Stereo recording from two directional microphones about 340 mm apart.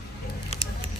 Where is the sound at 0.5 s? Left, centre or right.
Centre.